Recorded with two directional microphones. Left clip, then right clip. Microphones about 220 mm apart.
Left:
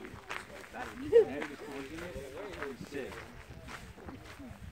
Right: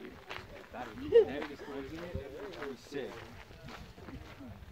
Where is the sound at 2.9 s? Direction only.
45° right (ahead or behind).